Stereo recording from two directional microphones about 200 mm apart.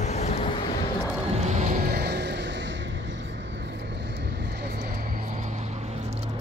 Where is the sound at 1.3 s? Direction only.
35° right (ahead or behind).